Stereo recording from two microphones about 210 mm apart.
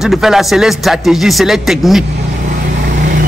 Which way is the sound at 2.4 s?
35° right (ahead or behind).